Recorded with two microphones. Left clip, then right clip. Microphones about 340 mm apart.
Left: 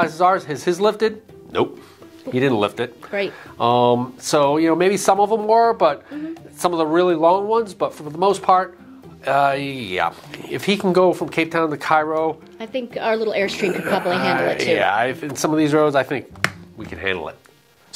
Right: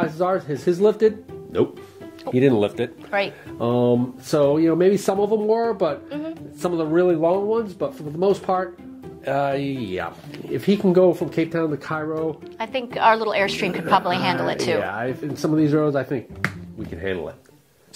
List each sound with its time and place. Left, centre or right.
0.0 s speech: left
3.1 s a woman's voice: right
3.5 s speech: left
12.5 s a woman's voice: right
14.8 s speech: left